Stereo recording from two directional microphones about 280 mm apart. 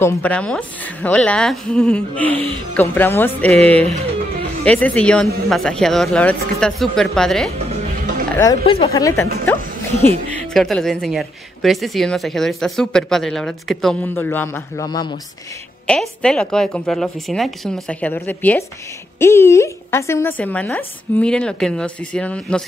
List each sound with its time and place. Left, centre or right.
0.0 s a woman's voice: centre
7.5 s music: right
8.4 s a woman's voice: centre
10.4 s speech: centre
15.9 s speech: centre